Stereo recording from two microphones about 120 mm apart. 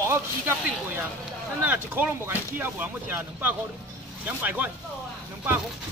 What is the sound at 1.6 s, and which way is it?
Speech, 15° right (ahead or behind).